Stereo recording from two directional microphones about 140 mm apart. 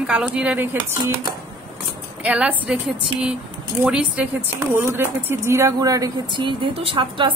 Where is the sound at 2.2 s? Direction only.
10° right (ahead or behind).